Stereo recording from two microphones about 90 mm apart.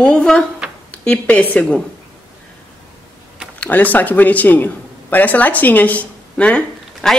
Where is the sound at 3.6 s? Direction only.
20° left (ahead or behind).